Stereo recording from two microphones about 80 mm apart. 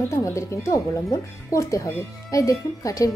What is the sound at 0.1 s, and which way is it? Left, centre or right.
A woman's voice, left.